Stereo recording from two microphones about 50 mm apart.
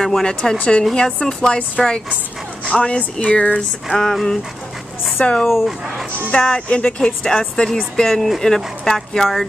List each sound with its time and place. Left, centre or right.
0.0 s speech: centre
2.7 s speech: left
3.5 s speech: centre
5.5 s speech: centre
6.3 s speech: left